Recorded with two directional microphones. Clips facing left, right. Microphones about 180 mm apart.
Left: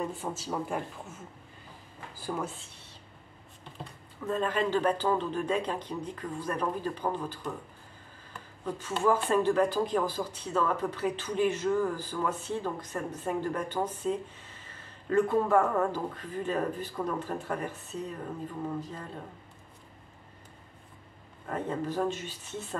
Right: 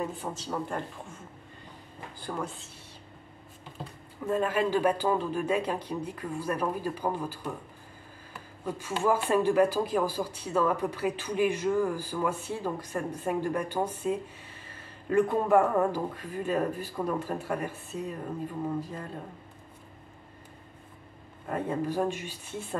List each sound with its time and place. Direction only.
0.0 s speech: centre (ahead or behind)
2.1 s speech: 5° left (ahead or behind)
4.3 s speech: 10° right (ahead or behind)
21.5 s speech: 10° right (ahead or behind)